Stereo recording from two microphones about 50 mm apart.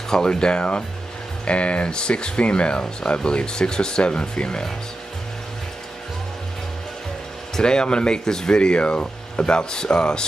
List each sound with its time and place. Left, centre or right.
0.1 s speech: centre
7.5 s speech: centre